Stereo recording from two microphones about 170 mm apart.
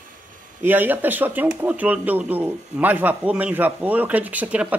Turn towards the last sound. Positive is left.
turn(degrees=-10)  # may be behind; listen again after turning